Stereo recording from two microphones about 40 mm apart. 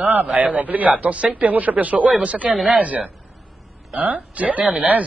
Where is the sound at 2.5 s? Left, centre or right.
Centre.